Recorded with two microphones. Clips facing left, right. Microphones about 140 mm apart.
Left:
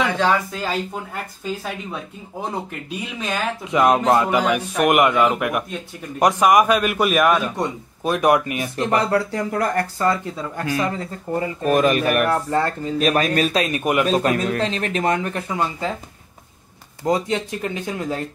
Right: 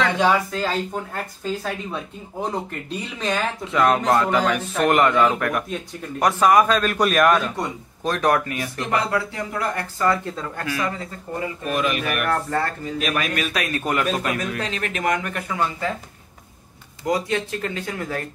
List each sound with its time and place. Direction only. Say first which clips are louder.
0.5 s a man's voice: right 1 dB; 10° left (ahead or behind)
3.6 s a man's voice: left 3 dB; 15° left (ahead or behind); by 10.0 s 45° left (ahead or behind)
10.6 s speech: left 4 dB; 30° left (ahead or behind)
12.3 s speech: left 3 dB; 20° left (ahead or behind)
12.8 s speech: left 6 dB; 35° left (ahead or behind); by 14.0 s 15° left (ahead or behind)
14.0 s speech: left 5 dB; 35° left (ahead or behind)
17.0 s speech: left 2 dB; 20° left (ahead or behind)